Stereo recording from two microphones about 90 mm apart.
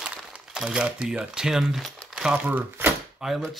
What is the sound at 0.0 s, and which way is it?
Speech, 10° right (ahead or behind).